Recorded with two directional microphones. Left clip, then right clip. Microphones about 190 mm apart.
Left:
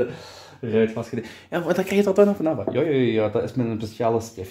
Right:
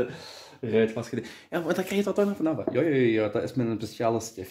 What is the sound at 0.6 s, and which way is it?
Speech, 20° right (ahead or behind).